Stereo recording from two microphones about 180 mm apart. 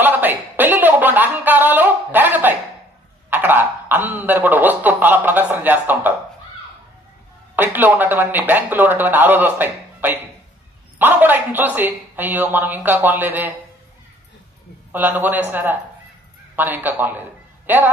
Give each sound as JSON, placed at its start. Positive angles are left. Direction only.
{"t": 0.0, "sound": "music", "side_deg": -10}
{"t": 3.3, "sound": "a sound", "side_deg": -10}
{"t": 7.5, "sound": "speech", "side_deg": -10}
{"t": 14.9, "sound": "a man's voice", "side_deg": -10}